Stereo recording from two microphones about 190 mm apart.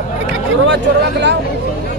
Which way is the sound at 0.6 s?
70° right (ahead or behind).